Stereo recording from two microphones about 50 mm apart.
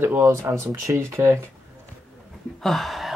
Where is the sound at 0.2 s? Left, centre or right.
Right.